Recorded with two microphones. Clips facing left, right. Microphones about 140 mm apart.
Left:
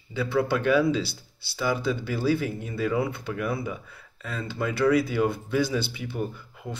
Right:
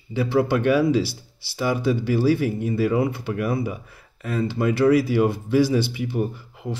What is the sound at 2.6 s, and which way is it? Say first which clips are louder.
Speech: right 5 dB; 55° right (ahead or behind).